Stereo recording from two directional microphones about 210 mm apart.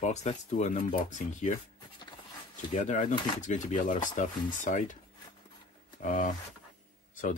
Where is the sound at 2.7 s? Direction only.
35° left (ahead or behind).